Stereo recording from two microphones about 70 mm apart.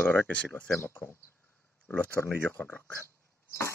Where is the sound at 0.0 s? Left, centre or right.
Left.